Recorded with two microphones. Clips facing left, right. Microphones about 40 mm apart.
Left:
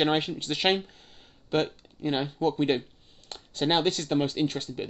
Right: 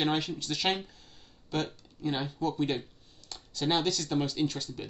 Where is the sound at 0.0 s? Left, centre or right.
Left.